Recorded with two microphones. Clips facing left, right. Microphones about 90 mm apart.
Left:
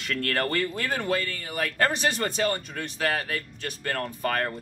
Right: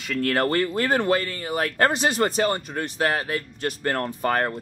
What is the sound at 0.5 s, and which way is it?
Speech, 45° right (ahead or behind).